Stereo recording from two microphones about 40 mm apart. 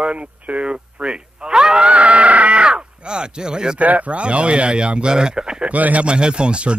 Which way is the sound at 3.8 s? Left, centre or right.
Right.